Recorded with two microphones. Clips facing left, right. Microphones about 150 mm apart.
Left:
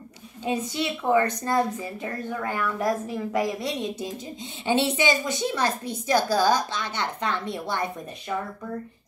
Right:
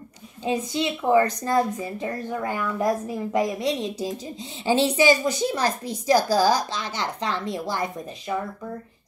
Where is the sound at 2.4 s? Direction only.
20° right (ahead or behind).